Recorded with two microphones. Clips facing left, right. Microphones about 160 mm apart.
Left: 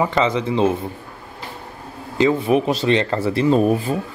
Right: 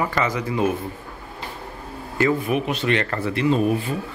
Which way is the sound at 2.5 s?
35° left (ahead or behind).